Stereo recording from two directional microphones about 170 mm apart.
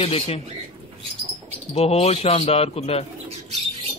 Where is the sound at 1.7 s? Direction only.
40° left (ahead or behind).